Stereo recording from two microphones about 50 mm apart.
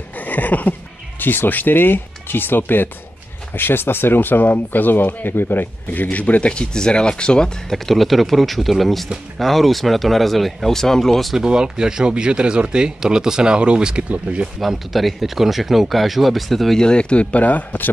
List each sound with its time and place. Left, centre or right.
0.2 s a sound: left
1.2 s speech: left
6.1 s speech: left; by 11.3 s centre
11.3 s speech: centre
14.6 s speech: centre
16.8 s speech: centre; by 17.9 s left